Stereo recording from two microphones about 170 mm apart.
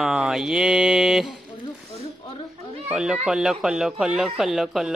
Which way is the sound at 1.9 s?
35° left (ahead or behind).